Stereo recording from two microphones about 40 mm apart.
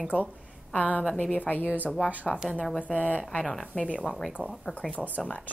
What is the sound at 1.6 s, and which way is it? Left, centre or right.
Speech, right.